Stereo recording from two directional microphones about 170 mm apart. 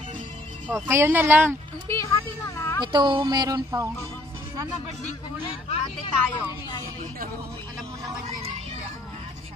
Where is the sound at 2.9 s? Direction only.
30° right (ahead or behind).